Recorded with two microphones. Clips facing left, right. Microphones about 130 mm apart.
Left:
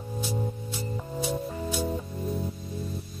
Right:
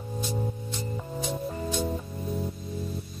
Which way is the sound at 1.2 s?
5° left (ahead or behind).